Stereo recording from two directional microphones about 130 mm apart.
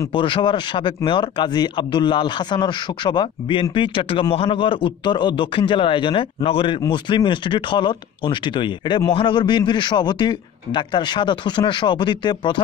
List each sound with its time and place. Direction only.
0.1 s speech: 40° left (ahead or behind)